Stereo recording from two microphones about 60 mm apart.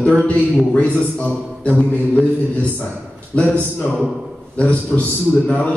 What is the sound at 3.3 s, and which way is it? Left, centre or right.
Speech, centre.